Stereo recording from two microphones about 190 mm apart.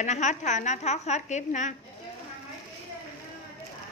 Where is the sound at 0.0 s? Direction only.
40° left (ahead or behind).